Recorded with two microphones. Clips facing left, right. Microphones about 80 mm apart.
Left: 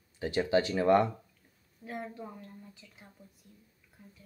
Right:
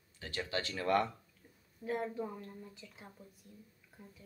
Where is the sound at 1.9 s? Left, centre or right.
Centre.